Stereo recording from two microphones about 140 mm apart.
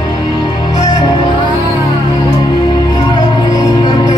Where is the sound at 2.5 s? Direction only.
35° left (ahead or behind).